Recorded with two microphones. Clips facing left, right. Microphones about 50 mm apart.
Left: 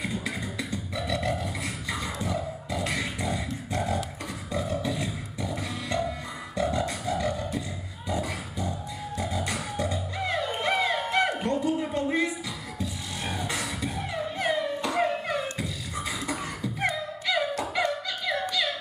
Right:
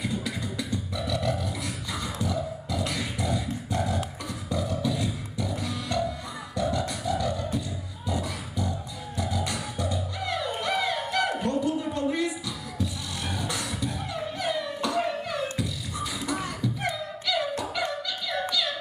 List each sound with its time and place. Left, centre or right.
0.0 s beatboxing: left
4.5 s music: left
8.1 s beatboxing: left
9.2 s music: left
13.4 s music: left
16.6 s music: left